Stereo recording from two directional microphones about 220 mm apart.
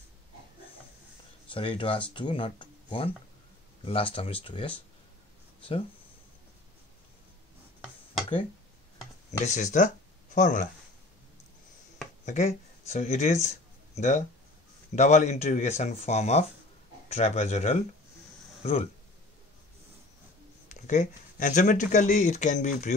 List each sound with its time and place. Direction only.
1.5 s speech: 25° left (ahead or behind)
9.4 s speech: 35° left (ahead or behind)
12.3 s speech: 30° left (ahead or behind)
20.6 s speech: 30° left (ahead or behind)